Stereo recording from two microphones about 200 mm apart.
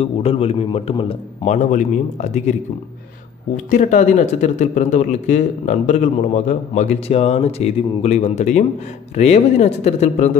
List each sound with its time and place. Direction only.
0.0 s speech: 30° left (ahead or behind)
3.5 s speech: 40° left (ahead or behind)